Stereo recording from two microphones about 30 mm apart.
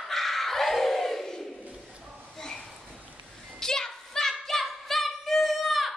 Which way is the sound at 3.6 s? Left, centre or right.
Centre.